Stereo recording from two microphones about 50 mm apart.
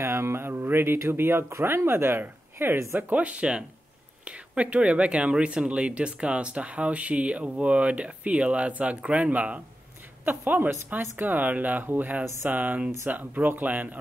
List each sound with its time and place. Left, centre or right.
0.0 s a sound: right
0.5 s mantra: right
1.0 s speech: right
1.6 s speech: right
3.0 s speech: right
10.2 s speech: right